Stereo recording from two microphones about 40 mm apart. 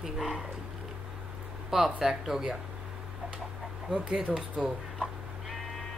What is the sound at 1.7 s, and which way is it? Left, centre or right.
Speech, centre.